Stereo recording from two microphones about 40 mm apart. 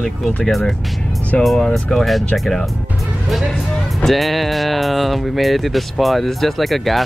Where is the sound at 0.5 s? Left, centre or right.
Centre.